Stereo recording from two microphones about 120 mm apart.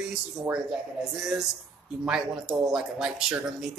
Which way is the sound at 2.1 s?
5° right (ahead or behind).